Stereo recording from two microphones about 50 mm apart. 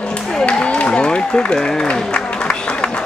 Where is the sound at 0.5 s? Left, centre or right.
Left.